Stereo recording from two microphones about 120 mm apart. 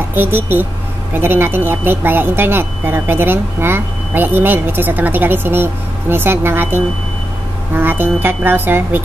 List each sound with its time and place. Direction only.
0.1 s speech: 15° right (ahead or behind)